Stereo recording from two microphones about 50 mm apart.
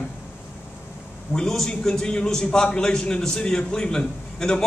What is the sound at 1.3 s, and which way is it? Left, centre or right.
A man's voice, centre.